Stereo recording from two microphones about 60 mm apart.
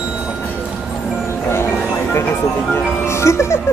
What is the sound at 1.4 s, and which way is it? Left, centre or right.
Music, left.